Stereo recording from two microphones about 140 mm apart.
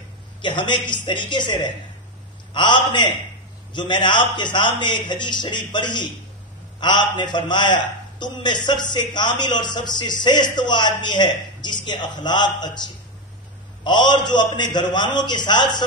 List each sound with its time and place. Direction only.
0.4 s a man's voice: 35° left (ahead or behind)